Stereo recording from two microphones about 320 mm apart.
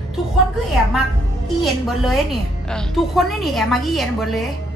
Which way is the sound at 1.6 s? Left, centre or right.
Centre.